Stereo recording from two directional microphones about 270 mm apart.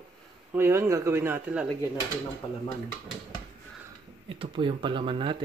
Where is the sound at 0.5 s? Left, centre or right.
Centre.